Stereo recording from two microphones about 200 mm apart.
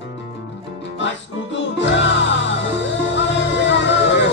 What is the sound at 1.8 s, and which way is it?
Music, 65° left (ahead or behind).